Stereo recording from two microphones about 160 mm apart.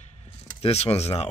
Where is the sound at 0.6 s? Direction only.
40° left (ahead or behind).